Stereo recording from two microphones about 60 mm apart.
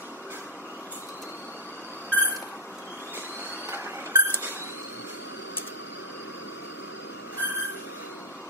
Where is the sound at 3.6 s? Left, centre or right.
Right.